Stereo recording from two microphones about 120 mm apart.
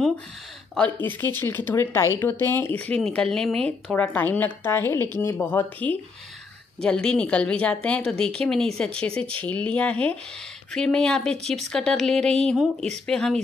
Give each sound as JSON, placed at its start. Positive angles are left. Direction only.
{"t": 0.7, "sound": "speech", "side_deg": 10}